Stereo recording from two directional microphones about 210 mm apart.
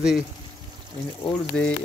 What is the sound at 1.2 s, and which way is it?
Speech, 5° left (ahead or behind).